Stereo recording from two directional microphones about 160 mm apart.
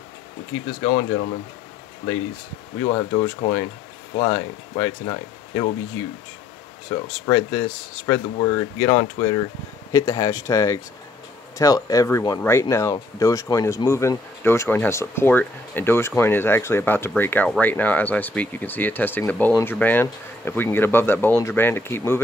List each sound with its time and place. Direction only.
2.8 s speech: 25° left (ahead or behind)
6.9 s speech: 25° left (ahead or behind)